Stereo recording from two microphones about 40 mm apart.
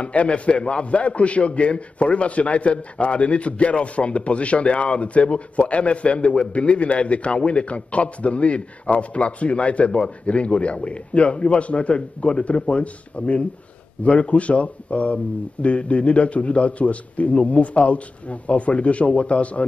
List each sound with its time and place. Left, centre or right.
0.0 s a man's voice: left